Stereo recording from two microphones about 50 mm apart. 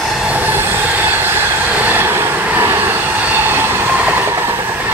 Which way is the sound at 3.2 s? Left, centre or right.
Right.